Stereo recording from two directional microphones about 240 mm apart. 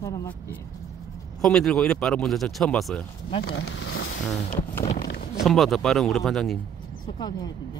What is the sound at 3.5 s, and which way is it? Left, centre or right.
Vehicle, left.